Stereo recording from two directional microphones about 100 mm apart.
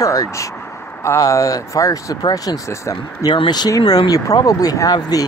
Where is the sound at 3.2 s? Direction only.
50° left (ahead or behind).